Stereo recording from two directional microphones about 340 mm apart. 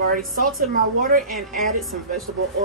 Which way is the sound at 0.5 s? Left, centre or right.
Right.